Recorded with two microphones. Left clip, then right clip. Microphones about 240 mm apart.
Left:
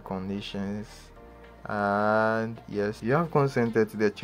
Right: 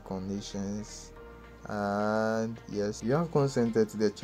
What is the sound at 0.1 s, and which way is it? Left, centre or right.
Speech, left.